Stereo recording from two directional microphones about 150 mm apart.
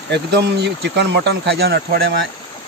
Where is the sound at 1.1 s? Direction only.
90° right.